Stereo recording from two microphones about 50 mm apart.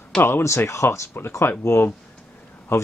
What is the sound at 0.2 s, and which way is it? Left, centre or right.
Speech, left.